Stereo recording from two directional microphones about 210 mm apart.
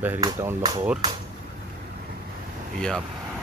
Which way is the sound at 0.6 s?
20° right (ahead or behind).